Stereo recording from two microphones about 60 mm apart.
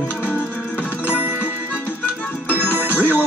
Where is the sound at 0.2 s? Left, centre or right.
Left.